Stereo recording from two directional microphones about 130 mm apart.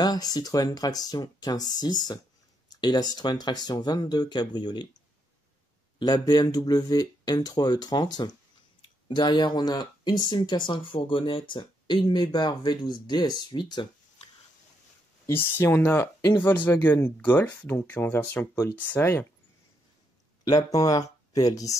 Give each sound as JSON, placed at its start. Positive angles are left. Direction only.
{"t": 0.0, "sound": "speech", "side_deg": 30}
{"t": 5.9, "sound": "speech", "side_deg": 30}
{"t": 15.2, "sound": "speech", "side_deg": 20}
{"t": 20.4, "sound": "speech", "side_deg": 30}